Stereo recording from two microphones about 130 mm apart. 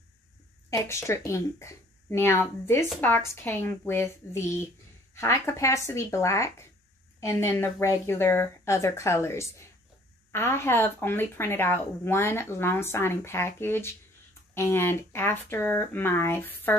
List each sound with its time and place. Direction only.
0.7 s speech: 20° left (ahead or behind)